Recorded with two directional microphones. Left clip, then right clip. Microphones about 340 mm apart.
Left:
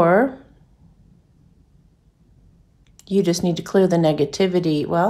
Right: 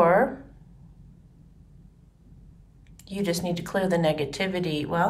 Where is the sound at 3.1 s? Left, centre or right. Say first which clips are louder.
Left 8 dB; centre.